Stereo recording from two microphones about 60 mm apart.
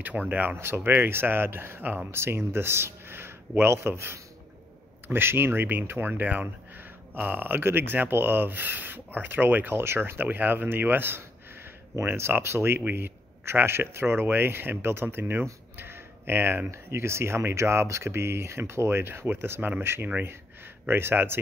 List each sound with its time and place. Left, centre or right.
0.0 s speech: right
0.6 s speech: right
20.2 s a sound: right
20.9 s speech: right